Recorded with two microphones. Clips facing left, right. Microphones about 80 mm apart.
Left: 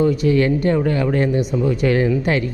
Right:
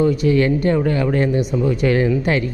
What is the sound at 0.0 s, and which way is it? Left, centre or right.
A man's voice, centre.